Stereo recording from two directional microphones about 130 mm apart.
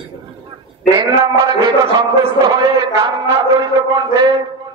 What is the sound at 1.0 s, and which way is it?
Speech, 25° right (ahead or behind).